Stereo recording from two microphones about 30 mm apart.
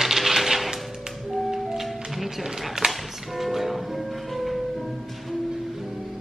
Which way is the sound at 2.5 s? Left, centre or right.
Centre.